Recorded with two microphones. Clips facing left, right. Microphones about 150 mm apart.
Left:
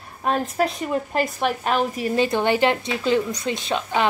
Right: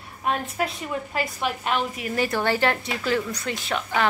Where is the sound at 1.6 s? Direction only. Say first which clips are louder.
Left 4 dB; 40° left (ahead or behind).